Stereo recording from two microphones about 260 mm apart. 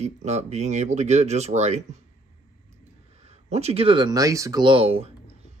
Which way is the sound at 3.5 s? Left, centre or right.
Right.